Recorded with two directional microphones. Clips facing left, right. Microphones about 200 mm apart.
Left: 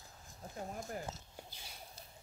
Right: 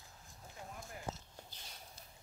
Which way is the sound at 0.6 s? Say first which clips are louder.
Left 8 dB; 40° left (ahead or behind).